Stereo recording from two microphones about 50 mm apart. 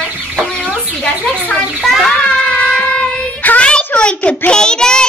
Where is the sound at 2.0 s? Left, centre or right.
Centre.